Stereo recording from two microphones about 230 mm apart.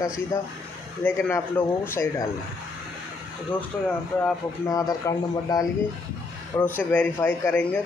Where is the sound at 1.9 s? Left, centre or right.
Centre.